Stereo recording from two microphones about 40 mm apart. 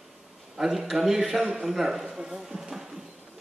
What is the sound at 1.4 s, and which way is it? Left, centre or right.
Speech, right.